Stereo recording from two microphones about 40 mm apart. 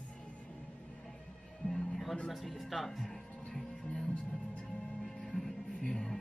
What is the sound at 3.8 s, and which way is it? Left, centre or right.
Music, left.